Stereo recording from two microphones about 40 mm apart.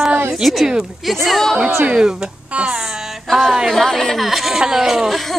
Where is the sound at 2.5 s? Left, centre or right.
Right.